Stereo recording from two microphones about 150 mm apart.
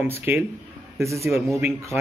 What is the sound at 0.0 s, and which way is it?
A man's voice, 15° right (ahead or behind).